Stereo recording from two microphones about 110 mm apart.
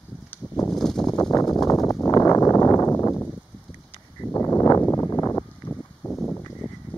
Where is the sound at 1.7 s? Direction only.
30° left (ahead or behind).